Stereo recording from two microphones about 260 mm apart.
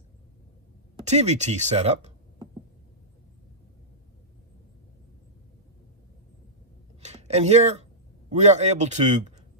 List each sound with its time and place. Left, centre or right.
1.0 s speech: right
7.0 s a sound: right
8.3 s speech: right